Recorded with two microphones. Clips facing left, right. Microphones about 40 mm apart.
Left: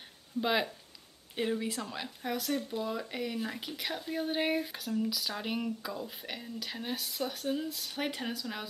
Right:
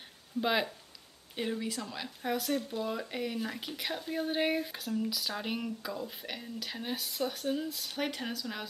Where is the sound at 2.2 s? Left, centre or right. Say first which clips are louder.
Right 2 dB; centre.